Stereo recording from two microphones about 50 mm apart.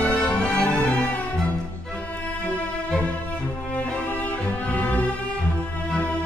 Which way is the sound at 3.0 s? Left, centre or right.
Left.